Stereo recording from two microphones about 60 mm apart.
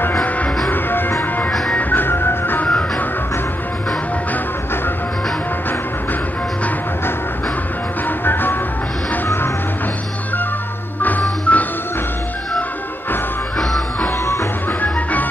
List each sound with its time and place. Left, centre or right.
0.7 s music: left
8.3 s music: left
11.0 s music: left
14.0 s music: left